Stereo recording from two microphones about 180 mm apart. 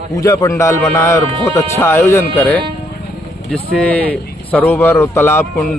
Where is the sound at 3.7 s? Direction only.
10° left (ahead or behind).